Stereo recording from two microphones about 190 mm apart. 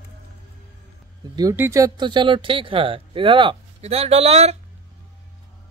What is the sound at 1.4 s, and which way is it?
Speech, 15° right (ahead or behind).